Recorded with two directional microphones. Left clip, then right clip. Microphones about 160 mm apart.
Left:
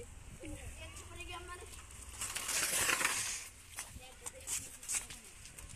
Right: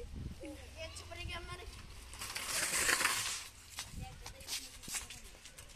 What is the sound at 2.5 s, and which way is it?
Crushing, 30° right (ahead or behind).